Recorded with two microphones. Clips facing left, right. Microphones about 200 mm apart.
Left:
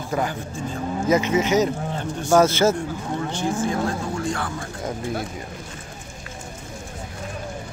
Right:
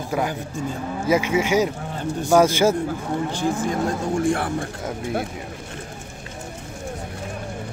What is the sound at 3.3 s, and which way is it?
Speech, 35° right (ahead or behind).